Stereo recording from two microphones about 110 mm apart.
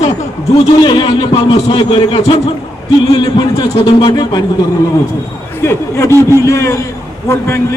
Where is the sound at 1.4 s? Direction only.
55° left (ahead or behind).